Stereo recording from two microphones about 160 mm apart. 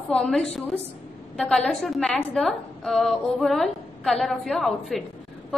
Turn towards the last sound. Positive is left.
turn(degrees=0)  # may be behind; listen again after turning